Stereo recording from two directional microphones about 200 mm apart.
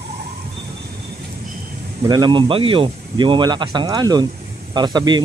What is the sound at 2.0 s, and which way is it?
Speech, 20° right (ahead or behind).